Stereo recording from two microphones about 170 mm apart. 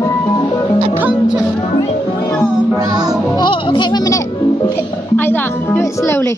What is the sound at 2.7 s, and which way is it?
Music, 20° right (ahead or behind).